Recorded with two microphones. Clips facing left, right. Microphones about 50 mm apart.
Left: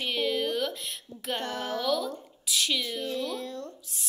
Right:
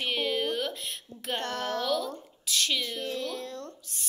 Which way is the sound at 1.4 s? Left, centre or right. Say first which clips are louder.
Right 2 dB; centre.